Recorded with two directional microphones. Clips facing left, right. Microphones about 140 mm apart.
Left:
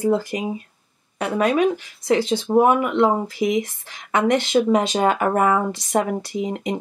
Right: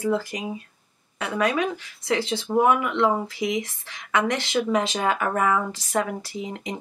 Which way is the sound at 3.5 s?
25° left (ahead or behind).